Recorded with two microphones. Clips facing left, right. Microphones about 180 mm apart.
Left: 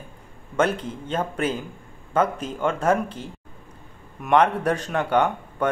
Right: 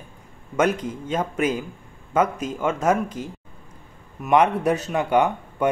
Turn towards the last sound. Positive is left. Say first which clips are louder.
# right 1 dB
turn(degrees=-10)  # may be behind; listen again after turning